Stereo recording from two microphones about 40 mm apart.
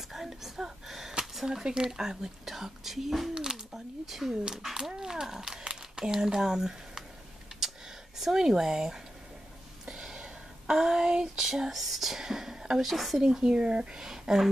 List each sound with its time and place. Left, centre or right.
0.1 s speech: centre
0.8 s a sound: centre
1.5 s speech: centre
3.3 s speech: centre
7.6 s a sound: centre
10.0 s a sound: centre
11.4 s speech: centre
12.8 s speech: centre
13.3 s speech: centre